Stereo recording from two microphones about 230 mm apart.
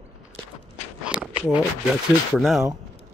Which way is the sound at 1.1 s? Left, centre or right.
Centre.